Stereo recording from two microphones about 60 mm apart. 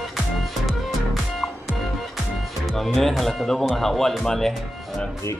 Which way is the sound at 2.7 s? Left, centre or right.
Centre.